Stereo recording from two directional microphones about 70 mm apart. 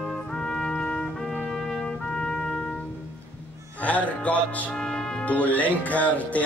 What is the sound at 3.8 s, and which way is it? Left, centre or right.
Music, left.